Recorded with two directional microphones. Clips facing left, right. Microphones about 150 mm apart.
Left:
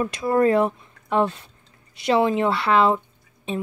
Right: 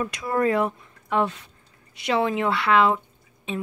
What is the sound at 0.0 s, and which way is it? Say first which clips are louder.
Speech: left 4 dB; 30° left (ahead or behind).